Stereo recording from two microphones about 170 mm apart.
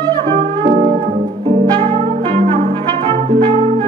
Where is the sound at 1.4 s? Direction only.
30° right (ahead or behind).